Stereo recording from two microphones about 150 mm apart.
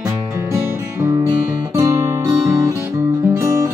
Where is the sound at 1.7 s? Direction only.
20° right (ahead or behind).